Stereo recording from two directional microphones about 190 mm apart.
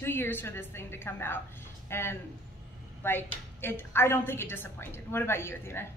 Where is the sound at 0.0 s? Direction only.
10° left (ahead or behind).